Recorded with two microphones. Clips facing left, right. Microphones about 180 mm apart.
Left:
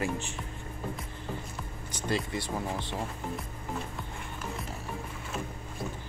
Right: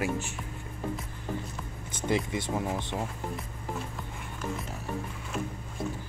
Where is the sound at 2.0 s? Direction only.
20° right (ahead or behind).